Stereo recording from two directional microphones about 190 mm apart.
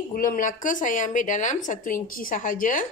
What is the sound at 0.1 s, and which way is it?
Speech, 45° left (ahead or behind).